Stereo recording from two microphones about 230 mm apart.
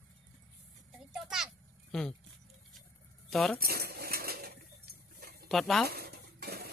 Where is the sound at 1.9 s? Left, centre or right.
Centre.